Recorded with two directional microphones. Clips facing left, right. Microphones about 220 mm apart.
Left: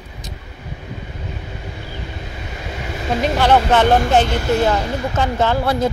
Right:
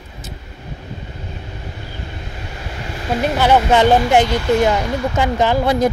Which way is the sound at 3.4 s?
10° right (ahead or behind).